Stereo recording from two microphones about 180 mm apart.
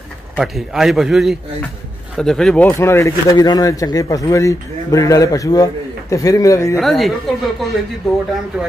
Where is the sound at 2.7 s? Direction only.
15° left (ahead or behind).